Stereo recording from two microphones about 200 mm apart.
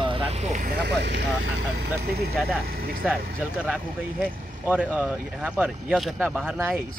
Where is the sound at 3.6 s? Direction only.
Centre (ahead or behind).